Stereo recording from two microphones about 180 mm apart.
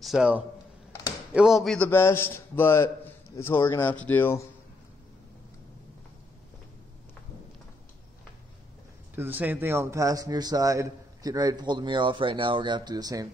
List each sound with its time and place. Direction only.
0.0 s a man's voice: 5° right (ahead or behind); by 4.5 s 15° left (ahead or behind)
9.1 s a man's voice: 10° right (ahead or behind)